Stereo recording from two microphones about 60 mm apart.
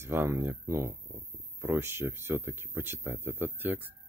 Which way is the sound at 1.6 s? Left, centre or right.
Right.